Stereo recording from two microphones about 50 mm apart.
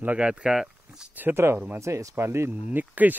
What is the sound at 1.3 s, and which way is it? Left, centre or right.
Speech, right.